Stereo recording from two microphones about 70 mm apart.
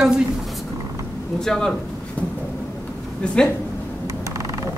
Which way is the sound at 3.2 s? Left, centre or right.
Centre.